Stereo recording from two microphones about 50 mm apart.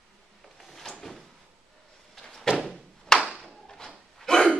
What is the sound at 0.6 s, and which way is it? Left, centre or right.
Door, centre.